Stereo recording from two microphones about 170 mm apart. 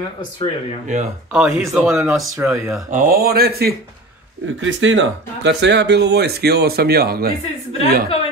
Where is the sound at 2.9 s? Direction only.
55° right (ahead or behind).